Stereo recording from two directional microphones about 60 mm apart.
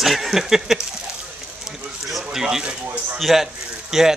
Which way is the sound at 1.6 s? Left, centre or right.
Centre.